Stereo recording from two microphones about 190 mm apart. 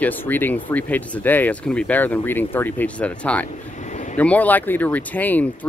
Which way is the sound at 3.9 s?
40° left (ahead or behind).